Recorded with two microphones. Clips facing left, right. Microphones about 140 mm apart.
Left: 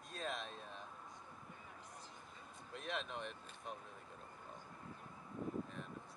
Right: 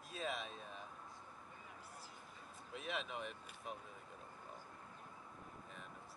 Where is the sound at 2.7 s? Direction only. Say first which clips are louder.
Even; 5° right (ahead or behind).